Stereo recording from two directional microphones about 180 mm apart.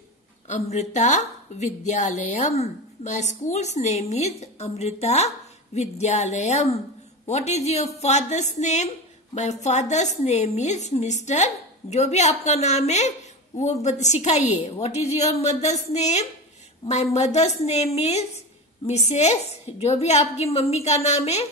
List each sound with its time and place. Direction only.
0.5 s a woman's voice: 40° left (ahead or behind)